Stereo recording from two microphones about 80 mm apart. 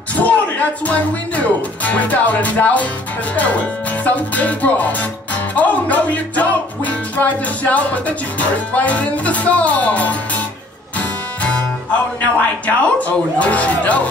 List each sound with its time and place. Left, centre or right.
0.1 s a sound: centre
0.8 s music: centre
12.4 s speech: centre